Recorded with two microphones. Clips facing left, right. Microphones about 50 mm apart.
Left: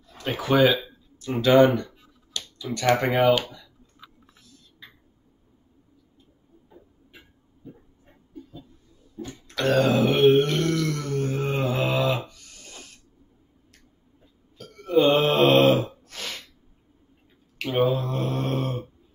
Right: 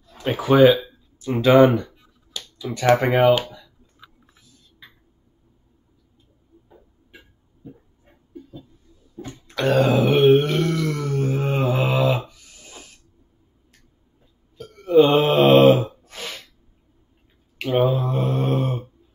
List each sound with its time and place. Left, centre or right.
0.3 s speech: centre
3.4 s clicking: centre
9.2 s a sound: centre
14.6 s a sound: centre
16.1 s sneeze: centre
17.6 s speech: centre